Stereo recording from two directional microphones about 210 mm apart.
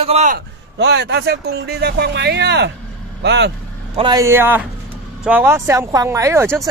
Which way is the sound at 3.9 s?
20° right (ahead or behind).